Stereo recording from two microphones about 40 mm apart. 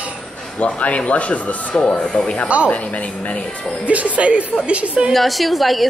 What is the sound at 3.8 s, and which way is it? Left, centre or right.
A woman's voice, right.